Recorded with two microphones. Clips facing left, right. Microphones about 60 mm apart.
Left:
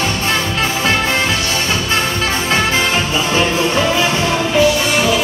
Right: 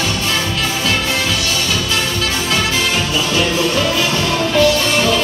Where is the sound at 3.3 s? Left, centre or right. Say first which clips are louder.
Left 1 dB; left.